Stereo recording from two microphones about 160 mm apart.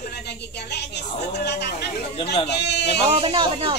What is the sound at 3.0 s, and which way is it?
Speech, 35° right (ahead or behind).